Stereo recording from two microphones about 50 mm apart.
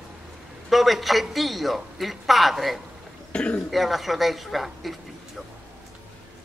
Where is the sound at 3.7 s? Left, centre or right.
Centre.